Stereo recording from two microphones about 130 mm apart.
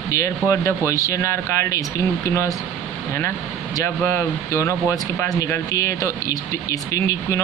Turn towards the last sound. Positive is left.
turn(degrees=25)  # may be behind; listen again after turning